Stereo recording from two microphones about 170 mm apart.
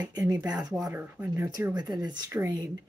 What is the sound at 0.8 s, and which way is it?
Speech, 10° right (ahead or behind).